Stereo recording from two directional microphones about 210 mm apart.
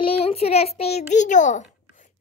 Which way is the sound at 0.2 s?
30° left (ahead or behind).